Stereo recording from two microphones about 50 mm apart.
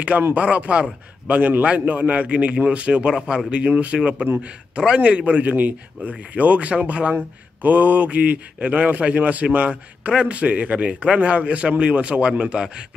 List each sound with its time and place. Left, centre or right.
0.3 s a man's voice: right